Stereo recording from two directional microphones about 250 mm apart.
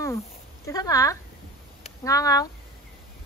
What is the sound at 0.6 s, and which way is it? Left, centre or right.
Speech, centre.